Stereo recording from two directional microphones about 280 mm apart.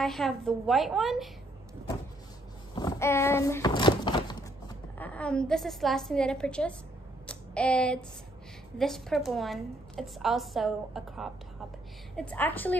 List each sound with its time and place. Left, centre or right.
0.0 s a woman's voice: centre
2.7 s a sound: centre
8.7 s a woman's voice: centre